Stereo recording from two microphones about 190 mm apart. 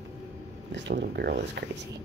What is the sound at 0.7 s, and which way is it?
Speech, 70° right (ahead or behind).